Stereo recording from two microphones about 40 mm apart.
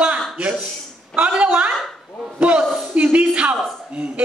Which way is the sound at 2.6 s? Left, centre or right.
Centre.